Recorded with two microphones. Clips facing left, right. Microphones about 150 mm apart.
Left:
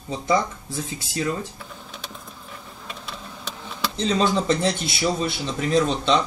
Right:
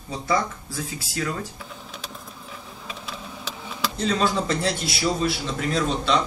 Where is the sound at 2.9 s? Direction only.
Centre (ahead or behind).